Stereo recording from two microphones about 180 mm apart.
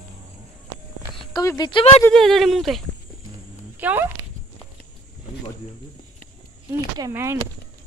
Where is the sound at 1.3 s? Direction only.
20° left (ahead or behind).